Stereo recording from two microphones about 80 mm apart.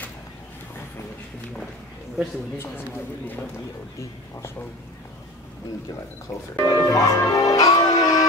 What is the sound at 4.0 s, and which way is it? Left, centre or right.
Speech, left.